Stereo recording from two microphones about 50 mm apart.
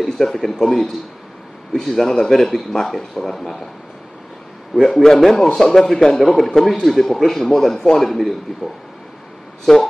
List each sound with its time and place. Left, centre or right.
0.2 s a man's voice: centre
4.8 s a man's voice: centre
9.7 s speech: centre